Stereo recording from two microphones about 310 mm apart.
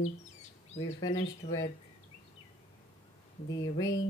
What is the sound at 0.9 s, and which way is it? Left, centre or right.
Speech, centre.